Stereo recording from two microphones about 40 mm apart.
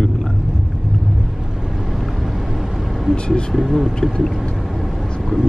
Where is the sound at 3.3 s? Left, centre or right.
Centre.